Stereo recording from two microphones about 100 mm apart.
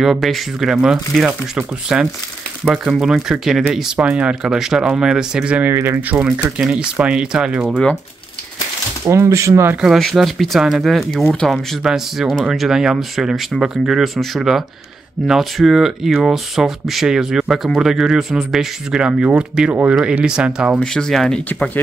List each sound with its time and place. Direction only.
0.0 s speech: 5° right (ahead or behind)
5.7 s speech: 25° right (ahead or behind); by 7.8 s 5° right (ahead or behind)
9.0 s speech: 30° right (ahead or behind)
9.8 s speech: centre (ahead or behind)
20.8 s speech: 5° left (ahead or behind)